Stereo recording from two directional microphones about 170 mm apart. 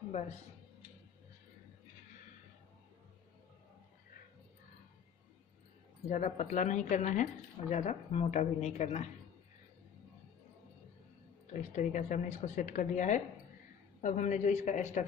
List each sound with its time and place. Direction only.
6.0 s a woman's voice: 45° left (ahead or behind)
11.5 s a woman's voice: 45° left (ahead or behind)